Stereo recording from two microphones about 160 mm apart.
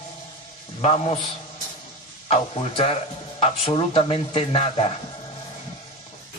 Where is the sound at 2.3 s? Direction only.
40° left (ahead or behind).